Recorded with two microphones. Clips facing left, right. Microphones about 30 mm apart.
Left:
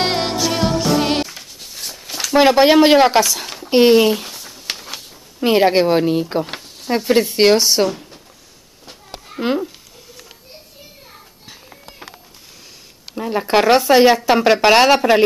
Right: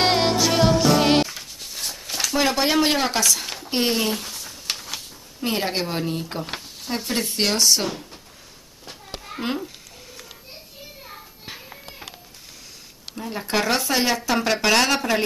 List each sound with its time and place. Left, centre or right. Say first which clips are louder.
0.0 s music: even; centre
2.3 s speech: left 10 dB; left
3.3 s speech: even; centre
3.7 s speech: left 12 dB; centre
4.1 s a sound: left 6 dB; centre
5.4 s speech: left 11 dB; left
6.4 s a sound: left 4 dB; centre
7.3 s speech: left 5 dB; left
7.9 s a sound: left 3 dB; centre
9.4 s a child's voice: left 8 dB; centre
13.0 s speech: left 9 dB; left